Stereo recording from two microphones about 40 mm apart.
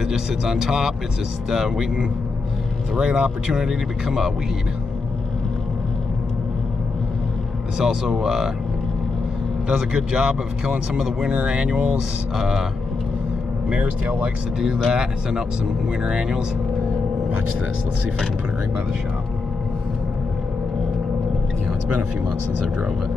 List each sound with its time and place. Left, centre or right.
0.0 s speech: centre
7.8 s speech: centre
9.7 s speech: right
13.7 s speech: right
14.9 s speech: centre